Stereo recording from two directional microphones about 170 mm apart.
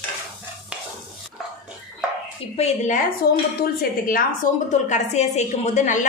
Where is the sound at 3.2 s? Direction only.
65° left (ahead or behind).